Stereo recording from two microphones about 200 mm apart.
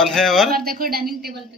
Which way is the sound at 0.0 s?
Centre (ahead or behind).